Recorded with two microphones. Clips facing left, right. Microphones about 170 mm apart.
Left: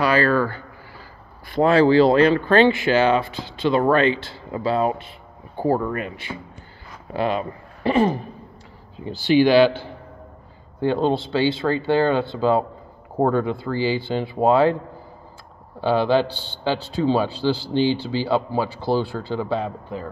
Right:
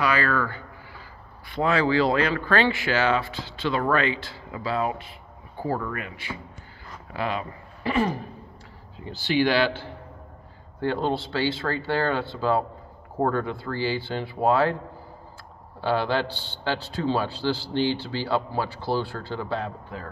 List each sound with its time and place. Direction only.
0.0 s speech: 30° left (ahead or behind)
9.0 s a man's voice: 15° left (ahead or behind)
15.8 s a man's voice: 15° left (ahead or behind)